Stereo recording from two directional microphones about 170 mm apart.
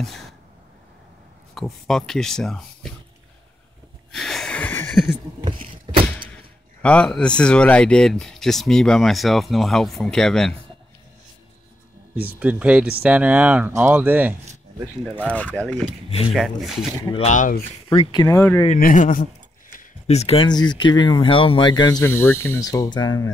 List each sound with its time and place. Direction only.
1.5 s speech: centre (ahead or behind)
4.1 s a sound: 5° left (ahead or behind)
6.8 s speech: 5° left (ahead or behind)
12.4 s speech: 10° right (ahead or behind)
15.2 s speech: 5° left (ahead or behind)
17.2 s speech: 45° left (ahead or behind)
17.8 s speech: 30° left (ahead or behind)
18.2 s speech: 15° left (ahead or behind)
18.8 s speech: 55° left (ahead or behind)
19.7 s a sound: 45° left (ahead or behind)
20.4 s speech: 25° left (ahead or behind)